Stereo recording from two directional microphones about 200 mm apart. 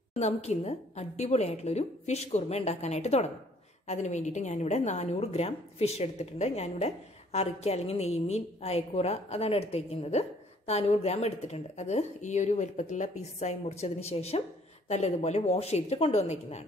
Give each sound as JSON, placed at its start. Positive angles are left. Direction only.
{"t": 0.1, "sound": "a woman's voice", "side_deg": 35}